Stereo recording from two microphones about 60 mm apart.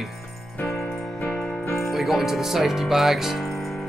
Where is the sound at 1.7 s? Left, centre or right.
Centre.